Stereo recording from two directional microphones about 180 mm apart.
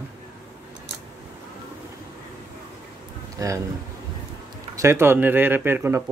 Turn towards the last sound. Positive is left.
turn(degrees=-10)  # may be behind; listen again after turning